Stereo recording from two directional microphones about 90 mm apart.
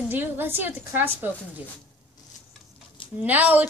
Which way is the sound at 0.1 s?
25° right (ahead or behind).